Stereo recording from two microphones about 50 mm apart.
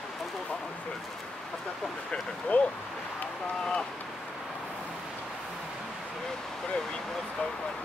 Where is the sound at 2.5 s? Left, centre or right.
Left.